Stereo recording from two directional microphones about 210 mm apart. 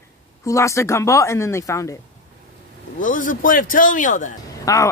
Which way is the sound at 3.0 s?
40° left (ahead or behind).